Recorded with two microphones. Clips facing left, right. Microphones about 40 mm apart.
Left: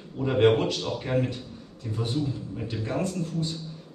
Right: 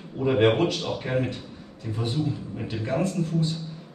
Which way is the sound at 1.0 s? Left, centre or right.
Centre.